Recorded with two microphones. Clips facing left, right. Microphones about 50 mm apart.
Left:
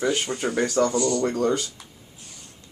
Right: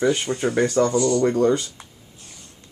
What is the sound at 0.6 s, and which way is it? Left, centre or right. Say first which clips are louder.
Speech: right 2 dB; right.